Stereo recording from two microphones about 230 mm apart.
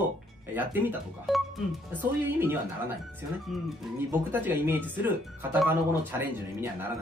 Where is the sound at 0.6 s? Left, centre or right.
Centre.